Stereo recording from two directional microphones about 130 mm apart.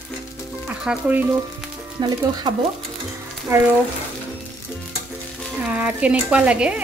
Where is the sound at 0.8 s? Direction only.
10° right (ahead or behind).